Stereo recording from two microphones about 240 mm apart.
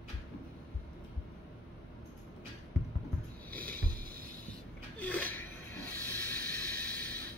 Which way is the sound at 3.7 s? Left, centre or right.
Right.